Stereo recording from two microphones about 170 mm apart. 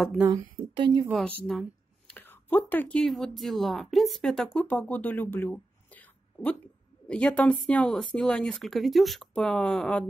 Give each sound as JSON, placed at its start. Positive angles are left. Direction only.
{"t": 0.7, "sound": "speech", "side_deg": -25}
{"t": 1.1, "sound": "a woman's voice", "side_deg": 0}